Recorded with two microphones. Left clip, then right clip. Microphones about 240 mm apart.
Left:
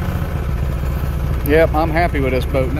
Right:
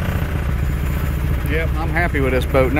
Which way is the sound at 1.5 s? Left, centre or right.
Centre.